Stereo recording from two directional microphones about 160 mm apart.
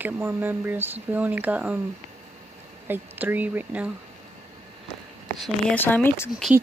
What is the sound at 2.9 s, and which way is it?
Speech, 10° right (ahead or behind).